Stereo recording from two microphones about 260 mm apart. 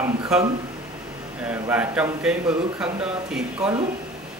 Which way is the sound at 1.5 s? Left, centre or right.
Centre.